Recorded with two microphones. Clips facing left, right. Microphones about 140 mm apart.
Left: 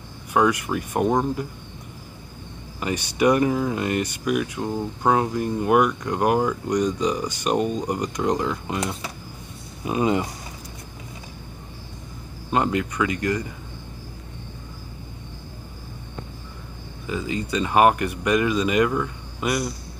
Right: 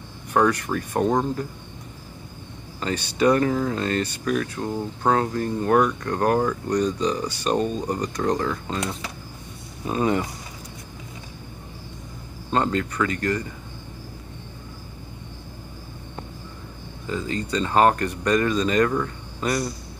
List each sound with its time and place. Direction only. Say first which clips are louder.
0.3 s speech: even; 10° left (ahead or behind)
2.8 s speech: even; 15° left (ahead or behind)
12.4 s speech: left 1 dB; 10° left (ahead or behind)
17.1 s speech: even; 15° left (ahead or behind)